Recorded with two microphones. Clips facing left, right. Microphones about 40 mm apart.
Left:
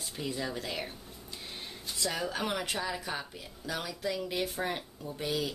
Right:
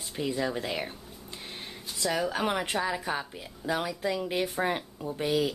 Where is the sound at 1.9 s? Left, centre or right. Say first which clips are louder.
Right 5 dB; centre.